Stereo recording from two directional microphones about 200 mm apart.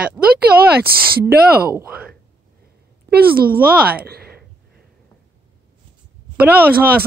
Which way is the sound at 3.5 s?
5° right (ahead or behind).